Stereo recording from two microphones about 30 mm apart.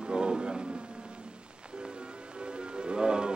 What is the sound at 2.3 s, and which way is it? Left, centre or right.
Music, right.